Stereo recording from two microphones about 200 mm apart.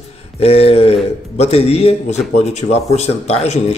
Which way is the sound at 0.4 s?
30° left (ahead or behind).